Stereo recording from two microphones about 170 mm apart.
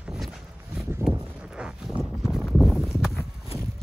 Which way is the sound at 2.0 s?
Centre (ahead or behind).